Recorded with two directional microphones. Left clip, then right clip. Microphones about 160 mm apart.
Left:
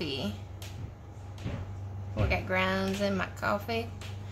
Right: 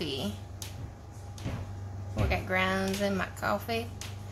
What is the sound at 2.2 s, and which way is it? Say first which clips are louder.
Speech: even; 10° left (ahead or behind).